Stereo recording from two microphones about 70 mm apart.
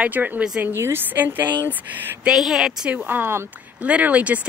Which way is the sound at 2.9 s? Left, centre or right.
Right.